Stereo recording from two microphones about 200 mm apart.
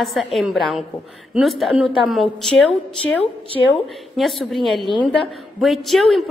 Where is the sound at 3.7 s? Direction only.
Centre (ahead or behind).